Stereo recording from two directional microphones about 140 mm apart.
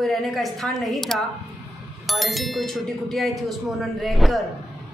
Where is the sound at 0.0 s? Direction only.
Centre (ahead or behind).